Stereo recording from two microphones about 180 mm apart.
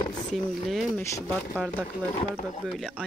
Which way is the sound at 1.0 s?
15° left (ahead or behind).